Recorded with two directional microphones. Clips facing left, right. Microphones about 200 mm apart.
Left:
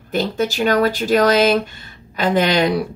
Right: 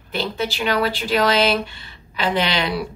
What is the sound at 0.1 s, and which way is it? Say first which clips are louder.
A woman's voice: left 5 dB; 45° left (ahead or behind).